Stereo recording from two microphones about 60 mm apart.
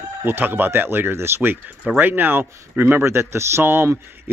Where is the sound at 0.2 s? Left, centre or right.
Right.